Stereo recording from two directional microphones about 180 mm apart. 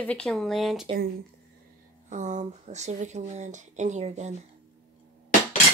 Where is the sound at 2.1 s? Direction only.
45° right (ahead or behind).